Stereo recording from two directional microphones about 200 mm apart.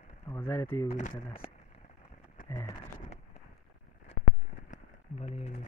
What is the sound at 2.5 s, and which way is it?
Speech, 15° left (ahead or behind).